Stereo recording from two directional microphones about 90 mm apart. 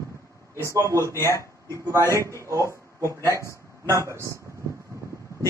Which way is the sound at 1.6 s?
35° right (ahead or behind).